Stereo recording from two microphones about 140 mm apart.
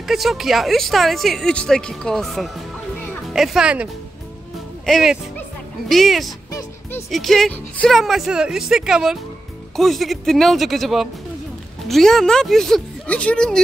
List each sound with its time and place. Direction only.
0.0 s speech: centre (ahead or behind)